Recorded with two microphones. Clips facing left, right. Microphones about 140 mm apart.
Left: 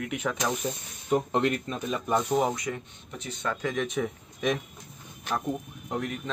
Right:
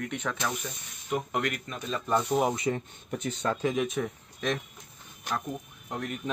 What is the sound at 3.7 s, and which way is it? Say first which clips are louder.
Speech: right 1 dB; 10° right (ahead or behind).